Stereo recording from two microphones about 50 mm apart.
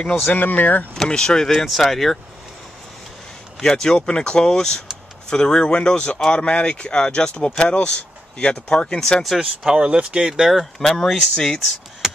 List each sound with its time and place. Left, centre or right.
0.3 s speech: left
0.9 s speech: centre
1.5 s speech: centre
3.6 s speech: centre
9.2 s speech: centre
10.5 s speech: centre
11.3 s speech: centre